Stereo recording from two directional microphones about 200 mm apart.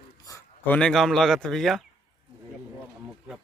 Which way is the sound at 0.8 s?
Centre (ahead or behind).